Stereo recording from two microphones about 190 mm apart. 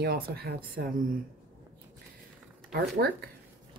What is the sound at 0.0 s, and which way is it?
Speech, 55° right (ahead or behind).